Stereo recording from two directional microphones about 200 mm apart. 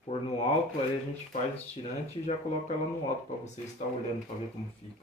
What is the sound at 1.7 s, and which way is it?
Speech, 35° left (ahead or behind).